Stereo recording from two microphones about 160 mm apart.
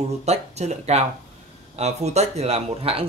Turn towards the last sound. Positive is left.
turn(degrees=-35)  # may be behind; listen again after turning